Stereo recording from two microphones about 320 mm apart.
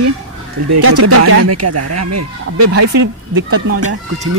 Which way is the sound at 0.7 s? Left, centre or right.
Right.